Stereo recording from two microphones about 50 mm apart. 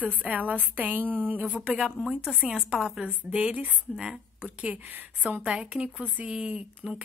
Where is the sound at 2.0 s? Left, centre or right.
Centre.